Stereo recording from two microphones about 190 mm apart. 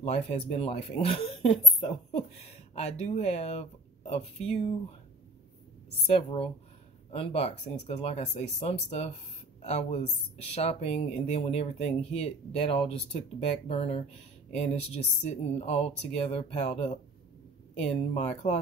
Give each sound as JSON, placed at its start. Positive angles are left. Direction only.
{"t": 0.0, "sound": "speech", "side_deg": 35}
{"t": 6.0, "sound": "speech", "side_deg": 30}
{"t": 18.1, "sound": "speech", "side_deg": 35}